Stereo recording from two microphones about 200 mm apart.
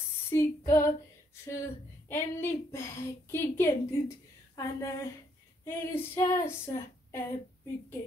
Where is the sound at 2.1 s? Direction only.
10° left (ahead or behind).